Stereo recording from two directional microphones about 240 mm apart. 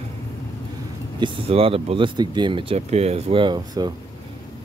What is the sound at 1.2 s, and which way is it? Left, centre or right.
Speech, right.